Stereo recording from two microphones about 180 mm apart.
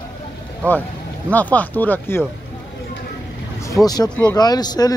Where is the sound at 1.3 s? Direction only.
10° left (ahead or behind).